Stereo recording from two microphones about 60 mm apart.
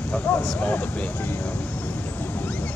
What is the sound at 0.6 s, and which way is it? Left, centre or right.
Speech, left.